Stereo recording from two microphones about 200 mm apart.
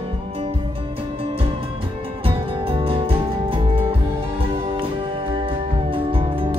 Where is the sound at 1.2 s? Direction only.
30° right (ahead or behind).